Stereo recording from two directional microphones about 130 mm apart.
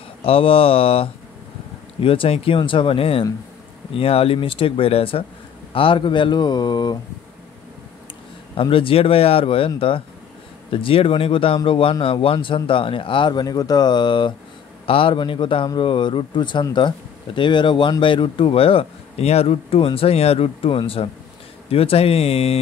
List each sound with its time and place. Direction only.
0.2 s a man's voice: 45° left (ahead or behind)
8.5 s a man's voice: 45° left (ahead or behind)